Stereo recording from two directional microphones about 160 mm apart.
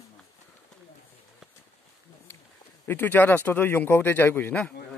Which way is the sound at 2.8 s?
10° left (ahead or behind).